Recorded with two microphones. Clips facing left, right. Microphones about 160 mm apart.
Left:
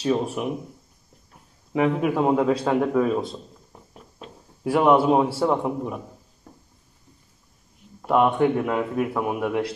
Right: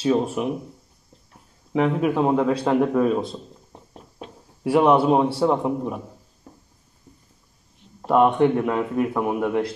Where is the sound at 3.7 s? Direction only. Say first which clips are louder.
Right 2 dB; 30° right (ahead or behind).